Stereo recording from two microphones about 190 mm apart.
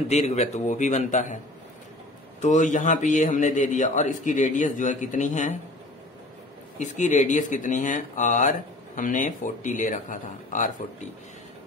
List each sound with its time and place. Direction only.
0.1 s speech: 35° left (ahead or behind)
2.4 s speech: 40° left (ahead or behind)
6.8 s speech: 40° left (ahead or behind)